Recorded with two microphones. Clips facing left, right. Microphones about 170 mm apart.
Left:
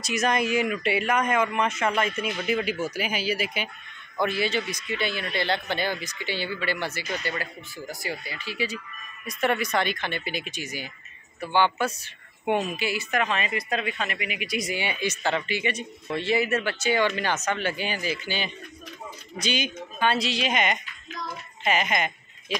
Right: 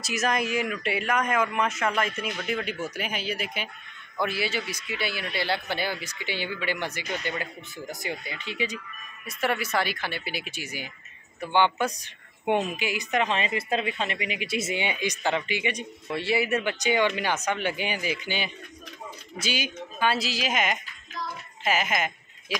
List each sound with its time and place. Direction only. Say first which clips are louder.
0.0 s a woman's voice: left 2 dB; centre (ahead or behind); by 8.7 s 20° right (ahead or behind)
9.2 s a woman's voice: left 3 dB; 5° right (ahead or behind)